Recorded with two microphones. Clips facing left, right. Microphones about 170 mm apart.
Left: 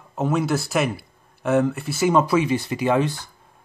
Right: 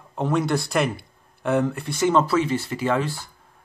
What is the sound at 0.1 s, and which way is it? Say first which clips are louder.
Speech: left 1 dB; 5° left (ahead or behind).